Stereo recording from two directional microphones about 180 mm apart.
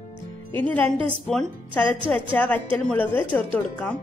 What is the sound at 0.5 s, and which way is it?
Speech, 10° left (ahead or behind).